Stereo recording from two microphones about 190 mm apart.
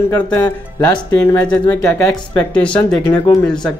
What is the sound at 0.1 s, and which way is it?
Speech, 15° left (ahead or behind).